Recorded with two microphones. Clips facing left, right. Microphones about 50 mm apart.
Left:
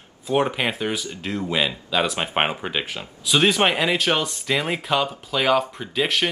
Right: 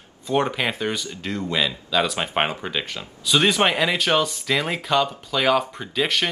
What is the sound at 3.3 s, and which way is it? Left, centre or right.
Speech, centre.